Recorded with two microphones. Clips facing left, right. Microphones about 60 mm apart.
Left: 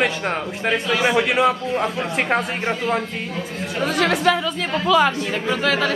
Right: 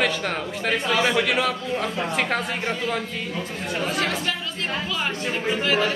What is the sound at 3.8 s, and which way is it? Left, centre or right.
Speech, left.